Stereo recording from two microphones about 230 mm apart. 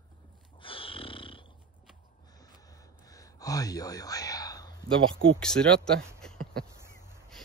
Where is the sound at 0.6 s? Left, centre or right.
Left.